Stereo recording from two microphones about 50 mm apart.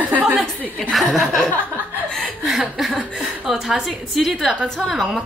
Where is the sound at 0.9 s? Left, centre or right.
Centre.